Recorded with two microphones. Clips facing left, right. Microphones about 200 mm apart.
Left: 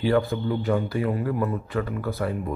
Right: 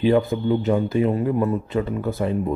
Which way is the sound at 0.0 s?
20° right (ahead or behind).